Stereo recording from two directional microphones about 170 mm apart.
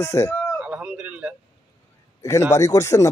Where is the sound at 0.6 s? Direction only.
5° right (ahead or behind).